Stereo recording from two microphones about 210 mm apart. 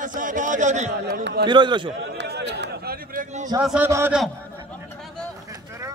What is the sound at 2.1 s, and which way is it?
Chatter, 50° right (ahead or behind).